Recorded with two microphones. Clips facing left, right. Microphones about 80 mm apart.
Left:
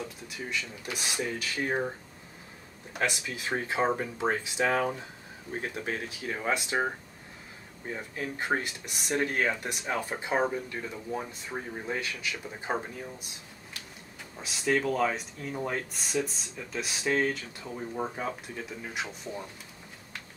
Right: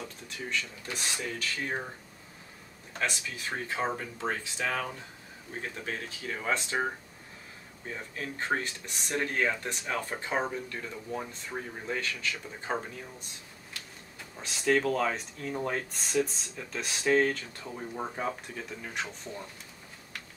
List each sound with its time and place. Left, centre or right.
0.5 s speech: centre
3.0 s speech: centre
14.4 s speech: centre